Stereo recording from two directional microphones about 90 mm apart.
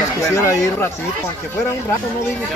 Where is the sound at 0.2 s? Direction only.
30° left (ahead or behind).